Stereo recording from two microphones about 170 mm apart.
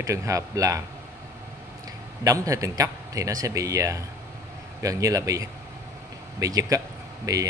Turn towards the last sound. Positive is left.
turn(degrees=-20)  # may be behind; listen again after turning